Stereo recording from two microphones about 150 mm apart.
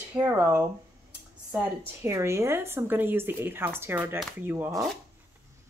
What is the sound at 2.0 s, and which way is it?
Speech, 20° right (ahead or behind).